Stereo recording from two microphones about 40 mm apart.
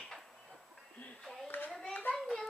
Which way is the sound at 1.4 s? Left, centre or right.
Left.